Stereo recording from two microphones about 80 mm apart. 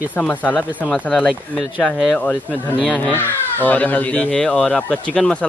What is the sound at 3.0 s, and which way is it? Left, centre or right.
Speech, left.